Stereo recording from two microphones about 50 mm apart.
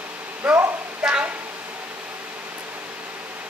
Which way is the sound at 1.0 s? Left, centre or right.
Centre.